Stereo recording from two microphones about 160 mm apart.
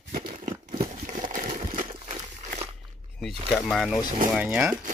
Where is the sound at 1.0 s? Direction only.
55° right (ahead or behind).